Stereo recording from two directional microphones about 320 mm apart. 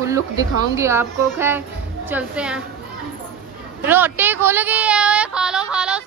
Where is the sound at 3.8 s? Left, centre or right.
Centre.